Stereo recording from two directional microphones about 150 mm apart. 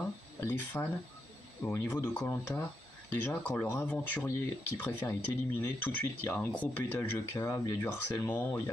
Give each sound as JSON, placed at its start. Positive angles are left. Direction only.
{"t": 0.4, "sound": "speech", "side_deg": 15}